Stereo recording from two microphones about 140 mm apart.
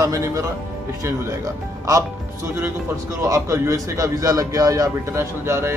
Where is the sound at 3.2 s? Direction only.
20° right (ahead or behind).